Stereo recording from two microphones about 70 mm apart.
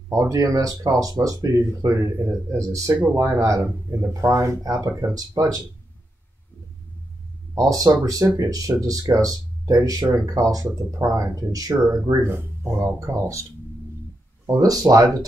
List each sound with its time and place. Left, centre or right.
0.1 s speech: right
7.5 s speech: right
12.2 s speech: right
14.5 s speech: right